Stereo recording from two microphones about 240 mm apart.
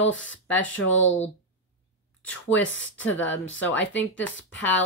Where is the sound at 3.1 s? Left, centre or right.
Left.